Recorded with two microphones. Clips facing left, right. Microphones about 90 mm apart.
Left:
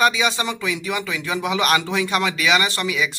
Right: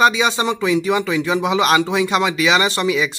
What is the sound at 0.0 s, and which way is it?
Speech, 25° right (ahead or behind).